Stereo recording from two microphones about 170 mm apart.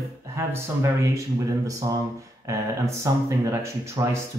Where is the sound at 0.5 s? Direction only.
15° right (ahead or behind).